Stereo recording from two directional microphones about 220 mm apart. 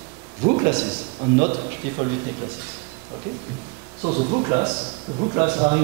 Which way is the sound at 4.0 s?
30° right (ahead or behind).